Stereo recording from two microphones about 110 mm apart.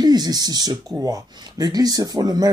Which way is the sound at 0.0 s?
40° right (ahead or behind).